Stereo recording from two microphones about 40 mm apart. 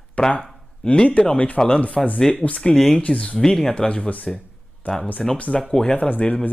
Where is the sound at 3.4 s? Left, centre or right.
Centre.